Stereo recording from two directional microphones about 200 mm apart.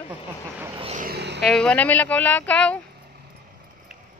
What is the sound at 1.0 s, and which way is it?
Speech, 55° right (ahead or behind).